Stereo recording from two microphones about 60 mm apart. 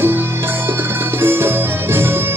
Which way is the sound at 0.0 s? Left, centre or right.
Right.